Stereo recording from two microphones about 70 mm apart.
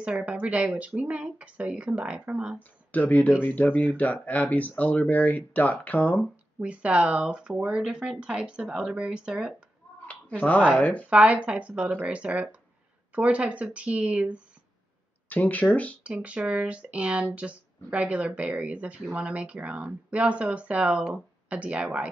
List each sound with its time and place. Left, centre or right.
0.0 s speech: centre
2.9 s speech: left
6.6 s speech: centre
10.0 s a sound: left
10.7 s speech: left
11.1 s speech: centre
15.2 s speech: left
16.0 s speech: centre